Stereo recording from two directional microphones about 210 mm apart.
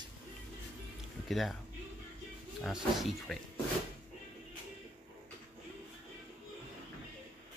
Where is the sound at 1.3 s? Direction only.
Centre (ahead or behind).